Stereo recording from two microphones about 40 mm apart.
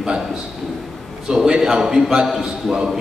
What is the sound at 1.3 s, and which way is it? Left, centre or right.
Speech, centre.